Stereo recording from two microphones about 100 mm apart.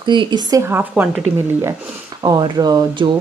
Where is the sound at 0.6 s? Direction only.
20° right (ahead or behind).